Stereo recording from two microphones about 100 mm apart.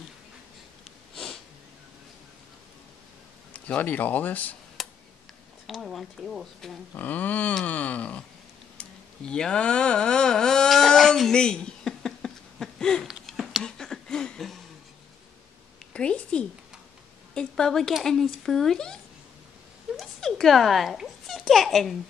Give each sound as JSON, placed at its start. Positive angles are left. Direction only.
{"t": 1.1, "sound": "sniff", "side_deg": 5}
{"t": 3.5, "sound": "a man's voice", "side_deg": 15}
{"t": 4.8, "sound": "tick", "side_deg": 0}
{"t": 5.7, "sound": "speech", "side_deg": 0}
{"t": 6.9, "sound": "a man's voice", "side_deg": 15}
{"t": 8.7, "sound": "a sound", "side_deg": 10}
{"t": 15.9, "sound": "a sound", "side_deg": 10}
{"t": 17.3, "sound": "speech", "side_deg": 5}
{"t": 20.0, "sound": "a sound", "side_deg": 5}